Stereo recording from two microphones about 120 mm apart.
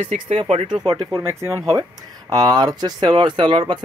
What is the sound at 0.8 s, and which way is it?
Speech, 35° right (ahead or behind).